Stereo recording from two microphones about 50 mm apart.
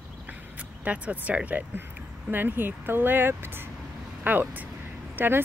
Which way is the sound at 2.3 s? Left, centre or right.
Right.